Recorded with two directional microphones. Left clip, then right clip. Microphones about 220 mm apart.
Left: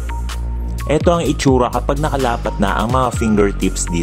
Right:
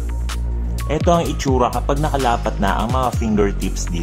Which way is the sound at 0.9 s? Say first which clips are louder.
Left 2 dB; 30° left (ahead or behind).